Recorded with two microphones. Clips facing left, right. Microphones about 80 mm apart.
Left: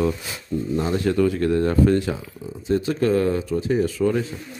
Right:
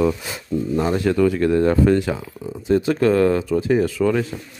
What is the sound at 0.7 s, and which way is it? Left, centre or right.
Speech, right.